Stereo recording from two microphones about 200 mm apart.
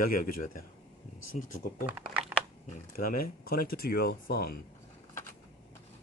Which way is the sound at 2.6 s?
40° left (ahead or behind).